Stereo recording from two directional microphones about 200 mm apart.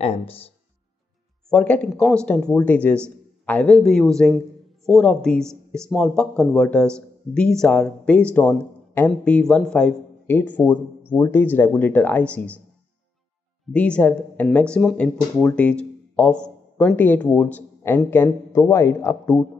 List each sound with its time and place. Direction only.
0.0 s speech: 30° left (ahead or behind)
1.5 s speech: 5° left (ahead or behind)
13.7 s speech: 5° left (ahead or behind)